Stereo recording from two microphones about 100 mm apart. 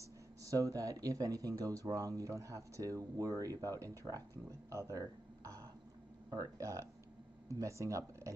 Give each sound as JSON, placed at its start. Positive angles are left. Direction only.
{"t": 0.0, "sound": "speech", "side_deg": -35}